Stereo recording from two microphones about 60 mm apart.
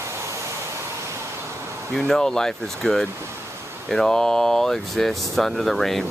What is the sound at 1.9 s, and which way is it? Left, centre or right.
Speech, centre.